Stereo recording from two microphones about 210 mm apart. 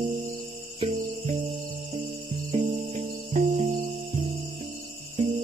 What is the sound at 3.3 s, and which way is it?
Music, 35° right (ahead or behind).